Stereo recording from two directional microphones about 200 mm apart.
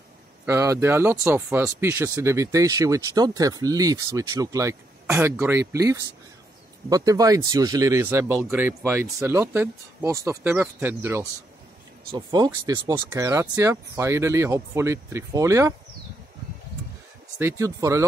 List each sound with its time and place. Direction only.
0.5 s speech: 15° right (ahead or behind)
17.4 s speech: 15° right (ahead or behind)